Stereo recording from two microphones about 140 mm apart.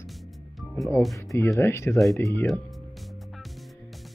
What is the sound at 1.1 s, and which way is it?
Speech, 20° left (ahead or behind).